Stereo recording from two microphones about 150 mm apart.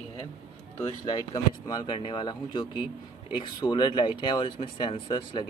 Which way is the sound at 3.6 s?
30° left (ahead or behind).